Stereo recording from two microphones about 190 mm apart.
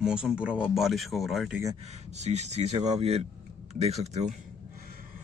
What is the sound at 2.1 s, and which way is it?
Speech, 35° right (ahead or behind).